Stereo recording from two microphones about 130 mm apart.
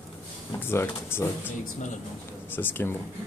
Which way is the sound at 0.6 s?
20° left (ahead or behind).